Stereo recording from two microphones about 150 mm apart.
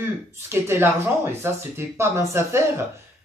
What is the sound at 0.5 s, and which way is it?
Speech, 15° right (ahead or behind).